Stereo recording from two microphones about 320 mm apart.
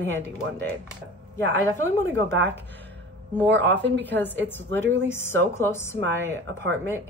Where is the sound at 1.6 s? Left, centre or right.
Centre.